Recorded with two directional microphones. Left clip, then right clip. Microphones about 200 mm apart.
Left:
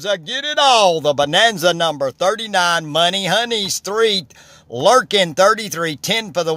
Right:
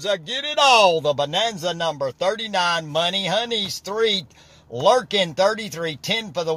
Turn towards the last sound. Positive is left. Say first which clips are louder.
# left 5 dB
turn(degrees=35)  # may be behind; listen again after turning